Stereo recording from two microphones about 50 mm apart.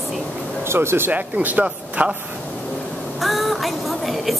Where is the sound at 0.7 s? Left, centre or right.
Right.